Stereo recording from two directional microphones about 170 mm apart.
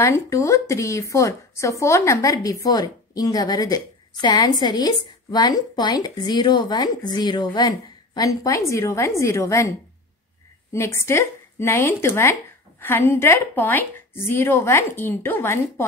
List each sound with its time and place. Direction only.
0.0 s speech: 15° left (ahead or behind)